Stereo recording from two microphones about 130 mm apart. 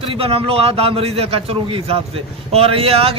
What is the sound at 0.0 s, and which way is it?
A man's voice, 45° right (ahead or behind).